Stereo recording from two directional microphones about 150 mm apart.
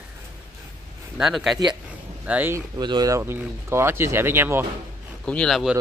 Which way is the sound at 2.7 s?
25° right (ahead or behind).